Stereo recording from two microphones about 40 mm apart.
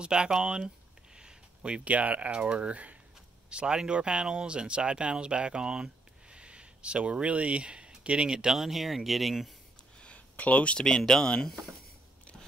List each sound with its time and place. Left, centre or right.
0.0 s speech: right
1.1 s a sound: right
2.0 s speech: right
3.4 s speech: right; by 9.5 s centre
9.9 s a sound: left
10.8 s speech: centre